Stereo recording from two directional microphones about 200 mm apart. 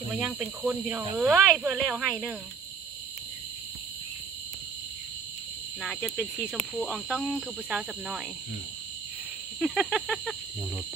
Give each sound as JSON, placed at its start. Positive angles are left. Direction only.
{"t": 0.1, "sound": "speech", "side_deg": -5}
{"t": 5.8, "sound": "speech", "side_deg": 10}
{"t": 6.8, "sound": "speech", "side_deg": 0}
{"t": 9.8, "sound": "cricket", "side_deg": -5}
{"t": 10.0, "sound": "speech", "side_deg": 0}